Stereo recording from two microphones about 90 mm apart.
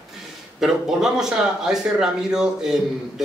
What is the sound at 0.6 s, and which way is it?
A man's voice, 5° right (ahead or behind).